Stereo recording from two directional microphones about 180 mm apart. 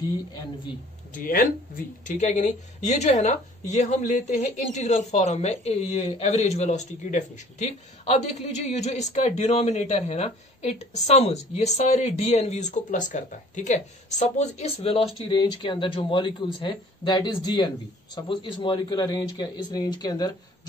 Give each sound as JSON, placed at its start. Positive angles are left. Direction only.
{"t": 1.1, "sound": "speech", "side_deg": 50}